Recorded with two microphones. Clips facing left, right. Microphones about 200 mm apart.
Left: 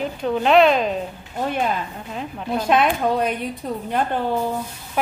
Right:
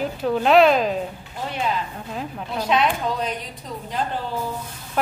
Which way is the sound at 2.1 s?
Centre (ahead or behind).